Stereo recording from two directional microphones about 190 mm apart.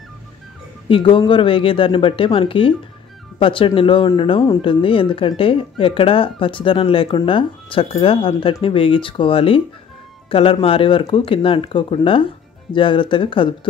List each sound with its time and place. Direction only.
0.8 s speech: 25° left (ahead or behind)